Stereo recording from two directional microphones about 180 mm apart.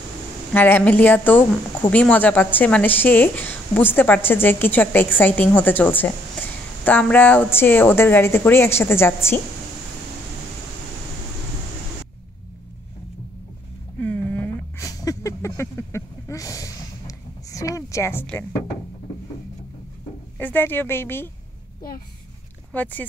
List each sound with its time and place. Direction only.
0.5 s speech: 10° left (ahead or behind)
13.9 s a sound: 10° left (ahead or behind)
14.9 s a sound: 20° left (ahead or behind)
17.5 s music: 15° left (ahead or behind)
20.3 s a woman's voice: 10° left (ahead or behind)
22.7 s speech: 10° left (ahead or behind)